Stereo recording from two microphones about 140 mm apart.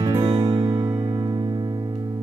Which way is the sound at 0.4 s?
45° right (ahead or behind).